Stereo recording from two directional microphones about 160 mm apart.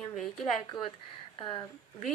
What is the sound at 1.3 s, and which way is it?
Speech, 30° left (ahead or behind).